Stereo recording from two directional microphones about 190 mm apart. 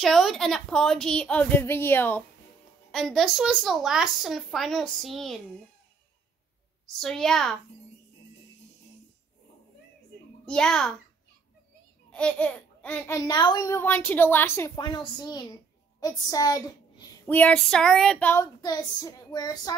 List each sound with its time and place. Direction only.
0.0 s a woman's voice: centre (ahead or behind)
6.9 s a woman's voice: centre (ahead or behind)
10.4 s a woman's voice: 5° left (ahead or behind)
12.1 s babbling: 5° left (ahead or behind)
13.3 s a woman's voice: 20° left (ahead or behind)
17.3 s child singing: 5° left (ahead or behind)